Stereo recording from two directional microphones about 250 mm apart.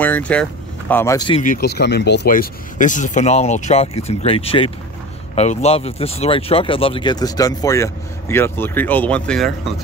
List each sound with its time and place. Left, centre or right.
0.0 s speech: centre
1.4 s speech: left; by 9.8 s centre